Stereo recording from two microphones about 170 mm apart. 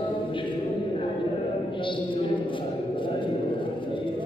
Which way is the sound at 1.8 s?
30° left (ahead or behind).